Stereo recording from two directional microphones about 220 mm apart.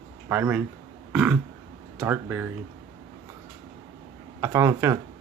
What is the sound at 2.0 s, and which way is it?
Speech, 10° right (ahead or behind).